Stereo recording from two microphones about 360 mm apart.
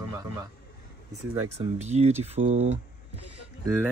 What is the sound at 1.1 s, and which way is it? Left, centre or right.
Speech, centre.